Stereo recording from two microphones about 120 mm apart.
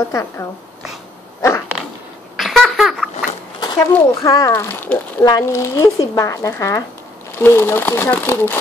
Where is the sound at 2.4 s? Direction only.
Centre (ahead or behind).